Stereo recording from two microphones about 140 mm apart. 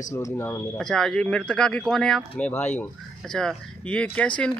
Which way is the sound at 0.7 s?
5° left (ahead or behind).